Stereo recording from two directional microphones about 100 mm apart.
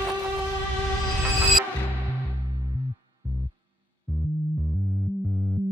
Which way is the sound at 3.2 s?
25° right (ahead or behind).